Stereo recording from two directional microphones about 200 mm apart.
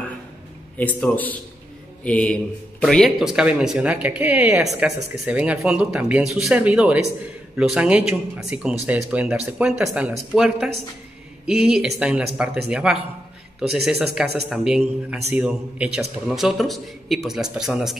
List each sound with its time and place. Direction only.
0.7 s a man's voice: 10° left (ahead or behind)